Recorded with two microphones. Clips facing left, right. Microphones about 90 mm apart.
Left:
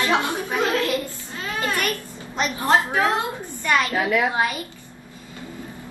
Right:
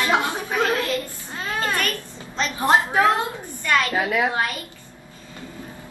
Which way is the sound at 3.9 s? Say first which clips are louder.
Left 1 dB; 20° right (ahead or behind).